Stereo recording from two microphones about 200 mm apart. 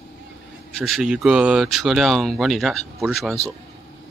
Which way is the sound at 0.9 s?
Centre (ahead or behind).